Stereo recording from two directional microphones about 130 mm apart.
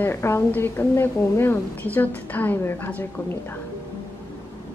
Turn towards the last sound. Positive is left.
turn(degrees=15)  # may be behind; listen again after turning